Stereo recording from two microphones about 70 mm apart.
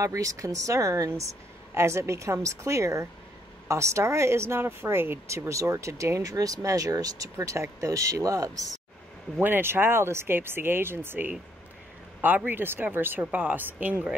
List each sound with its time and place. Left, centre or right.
0.0 s speech: right
1.7 s speech: right
5.5 s speech: right
9.4 s speech: right
12.4 s speech: right